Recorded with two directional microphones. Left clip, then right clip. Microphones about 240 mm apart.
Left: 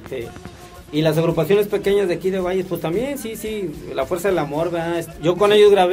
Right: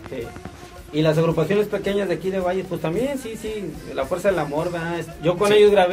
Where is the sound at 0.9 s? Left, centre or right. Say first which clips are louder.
Left 1 dB; left.